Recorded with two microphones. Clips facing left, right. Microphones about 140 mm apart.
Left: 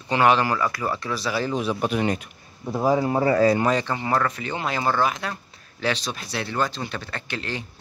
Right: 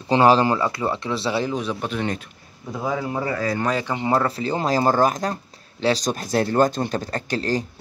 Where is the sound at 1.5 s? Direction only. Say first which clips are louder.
Left 2 dB; 5° left (ahead or behind).